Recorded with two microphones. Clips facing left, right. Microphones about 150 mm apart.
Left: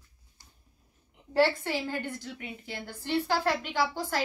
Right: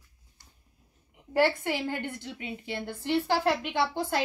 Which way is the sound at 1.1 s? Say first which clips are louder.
Even; 15° right (ahead or behind).